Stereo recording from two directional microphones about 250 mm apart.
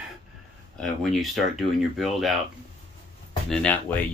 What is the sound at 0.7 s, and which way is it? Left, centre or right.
Speech, centre.